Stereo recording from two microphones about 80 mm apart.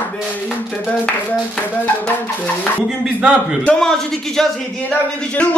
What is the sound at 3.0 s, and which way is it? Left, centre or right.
Speech, centre.